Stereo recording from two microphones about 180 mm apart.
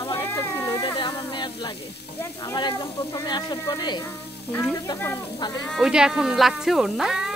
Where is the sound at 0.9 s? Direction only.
25° left (ahead or behind).